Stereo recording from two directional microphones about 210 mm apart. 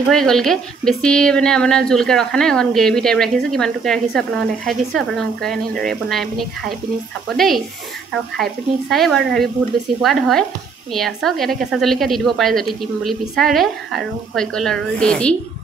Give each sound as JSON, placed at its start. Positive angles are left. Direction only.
{"t": 0.1, "sound": "a woman's voice", "side_deg": 0}